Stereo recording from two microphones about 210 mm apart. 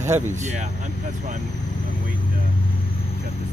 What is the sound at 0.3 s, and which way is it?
Speech, 35° right (ahead or behind).